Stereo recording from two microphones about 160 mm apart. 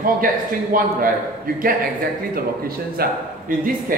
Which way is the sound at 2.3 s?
65° right (ahead or behind).